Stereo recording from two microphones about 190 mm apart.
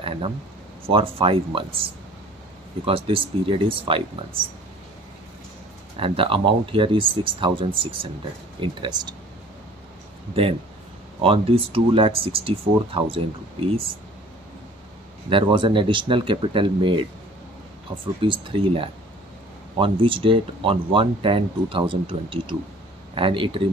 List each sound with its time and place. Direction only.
0.8 s speech: 30° right (ahead or behind)
5.9 s speech: 30° right (ahead or behind)
11.2 s speech: 30° right (ahead or behind)
15.2 s speech: 25° right (ahead or behind)
18.2 s speech: 25° right (ahead or behind)